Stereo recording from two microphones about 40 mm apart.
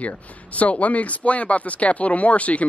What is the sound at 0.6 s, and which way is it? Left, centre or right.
Speech, left.